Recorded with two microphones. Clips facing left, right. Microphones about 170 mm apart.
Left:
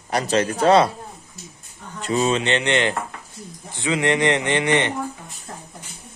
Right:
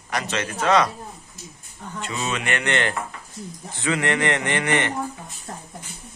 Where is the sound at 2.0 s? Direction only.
35° left (ahead or behind); by 4.9 s 20° left (ahead or behind).